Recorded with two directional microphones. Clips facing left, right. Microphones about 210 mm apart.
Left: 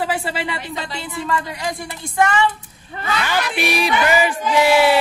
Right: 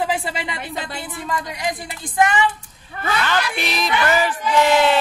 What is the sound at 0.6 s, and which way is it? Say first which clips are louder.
Speech: left 1 dB; 55° right (ahead or behind).